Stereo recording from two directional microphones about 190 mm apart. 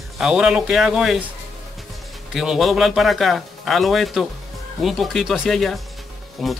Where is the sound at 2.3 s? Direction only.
Centre (ahead or behind).